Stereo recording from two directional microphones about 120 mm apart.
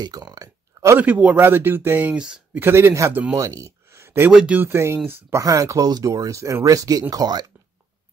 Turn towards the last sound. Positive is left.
turn(degrees=-35)  # may be behind; listen again after turning